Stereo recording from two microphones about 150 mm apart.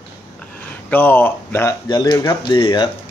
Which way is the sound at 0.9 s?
10° left (ahead or behind).